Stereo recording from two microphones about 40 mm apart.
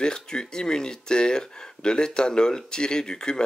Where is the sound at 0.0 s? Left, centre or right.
Centre.